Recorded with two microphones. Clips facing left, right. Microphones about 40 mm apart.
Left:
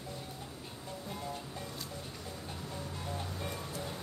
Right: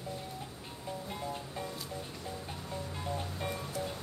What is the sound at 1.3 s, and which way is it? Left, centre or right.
Music, centre.